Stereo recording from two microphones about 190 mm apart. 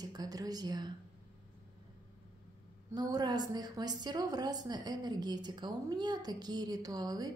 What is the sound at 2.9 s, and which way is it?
A woman's voice, 20° right (ahead or behind).